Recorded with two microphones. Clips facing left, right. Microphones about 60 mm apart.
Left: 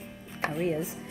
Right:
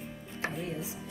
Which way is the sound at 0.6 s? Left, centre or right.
Left.